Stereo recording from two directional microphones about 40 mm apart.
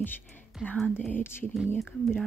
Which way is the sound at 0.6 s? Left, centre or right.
Right.